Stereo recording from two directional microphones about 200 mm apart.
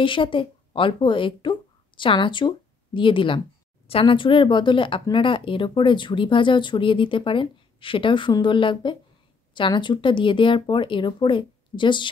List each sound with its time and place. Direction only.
0.0 s speech: 25° left (ahead or behind)